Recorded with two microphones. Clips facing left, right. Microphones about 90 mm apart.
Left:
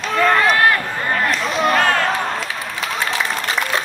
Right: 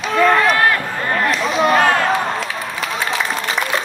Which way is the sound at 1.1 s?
Centre (ahead or behind).